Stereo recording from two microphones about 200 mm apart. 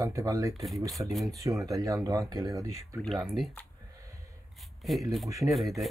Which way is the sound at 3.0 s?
Centre (ahead or behind).